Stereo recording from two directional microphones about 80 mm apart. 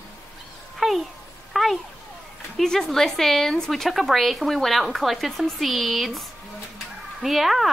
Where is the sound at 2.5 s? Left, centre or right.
Centre.